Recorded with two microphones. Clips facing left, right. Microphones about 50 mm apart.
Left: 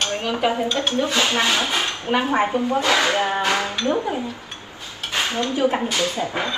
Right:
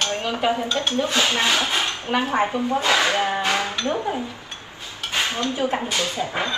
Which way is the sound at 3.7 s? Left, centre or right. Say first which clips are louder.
Left 2 dB; left.